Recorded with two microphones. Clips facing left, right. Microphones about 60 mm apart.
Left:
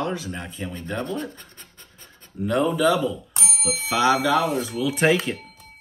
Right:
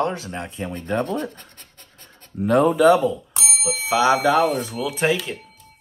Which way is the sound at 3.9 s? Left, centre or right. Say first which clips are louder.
Right 2 dB; right.